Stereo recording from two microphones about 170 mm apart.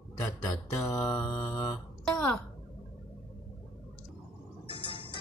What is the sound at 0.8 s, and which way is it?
Mantra, 15° left (ahead or behind).